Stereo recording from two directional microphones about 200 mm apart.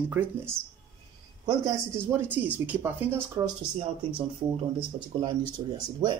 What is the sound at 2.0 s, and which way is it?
Speech, 10° right (ahead or behind).